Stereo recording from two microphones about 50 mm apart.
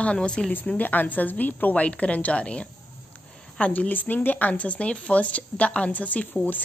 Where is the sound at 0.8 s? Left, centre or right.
Left.